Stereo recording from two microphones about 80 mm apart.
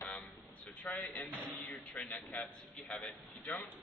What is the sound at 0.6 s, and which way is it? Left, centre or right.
A man's voice, centre.